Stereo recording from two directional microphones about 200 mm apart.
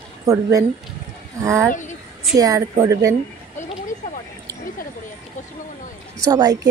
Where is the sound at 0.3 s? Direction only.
15° right (ahead or behind).